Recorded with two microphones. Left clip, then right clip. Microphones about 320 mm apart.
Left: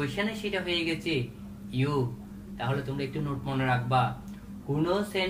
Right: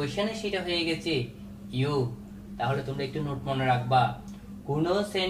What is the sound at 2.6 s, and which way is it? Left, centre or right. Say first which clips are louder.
Speech: right 3 dB; centre.